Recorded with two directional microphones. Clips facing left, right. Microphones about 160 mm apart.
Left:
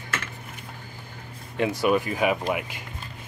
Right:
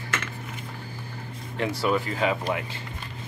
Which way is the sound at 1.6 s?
15° left (ahead or behind).